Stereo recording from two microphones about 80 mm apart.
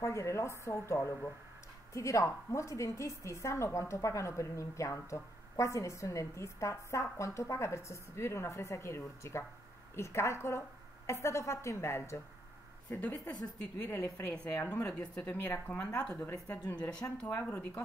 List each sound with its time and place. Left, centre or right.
0.0 s a woman's voice: left
14.3 s speech: centre
14.6 s speech: left
15.7 s speech: centre